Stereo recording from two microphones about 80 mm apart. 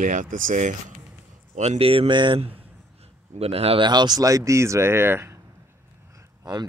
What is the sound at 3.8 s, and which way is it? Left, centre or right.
Speech, right.